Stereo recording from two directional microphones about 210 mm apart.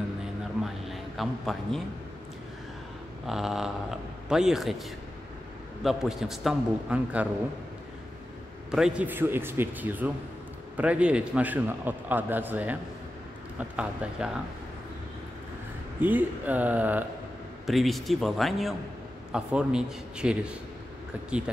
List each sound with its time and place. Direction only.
0.2 s a sound: centre (ahead or behind)
3.3 s a man's voice: centre (ahead or behind)
5.9 s a man's voice: centre (ahead or behind)
8.7 s a man's voice: 5° right (ahead or behind)
16.0 s a man's voice: 10° right (ahead or behind)